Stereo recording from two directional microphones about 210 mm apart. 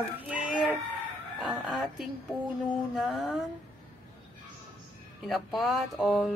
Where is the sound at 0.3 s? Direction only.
5° right (ahead or behind).